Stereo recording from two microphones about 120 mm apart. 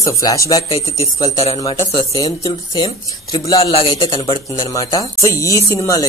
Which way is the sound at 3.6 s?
50° left (ahead or behind).